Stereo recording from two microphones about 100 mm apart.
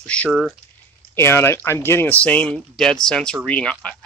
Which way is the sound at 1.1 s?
25° left (ahead or behind).